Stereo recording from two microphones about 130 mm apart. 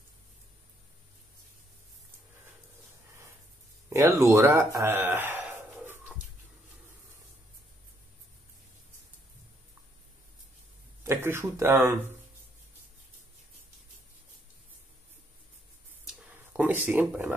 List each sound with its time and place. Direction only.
3.9 s speech: 20° right (ahead or behind)
4.7 s chicken: 20° right (ahead or behind)
11.1 s speech: 20° right (ahead or behind)
16.5 s a sound: 15° right (ahead or behind)